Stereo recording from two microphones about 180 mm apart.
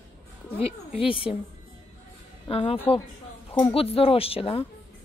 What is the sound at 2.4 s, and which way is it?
Speech, 30° left (ahead or behind).